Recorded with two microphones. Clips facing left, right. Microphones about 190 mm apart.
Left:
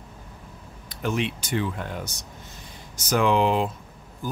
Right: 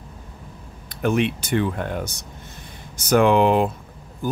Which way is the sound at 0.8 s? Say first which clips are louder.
Right 6 dB; 60° right (ahead or behind).